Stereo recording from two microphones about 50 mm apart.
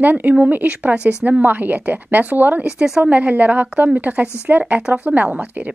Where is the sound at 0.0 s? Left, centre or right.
Right.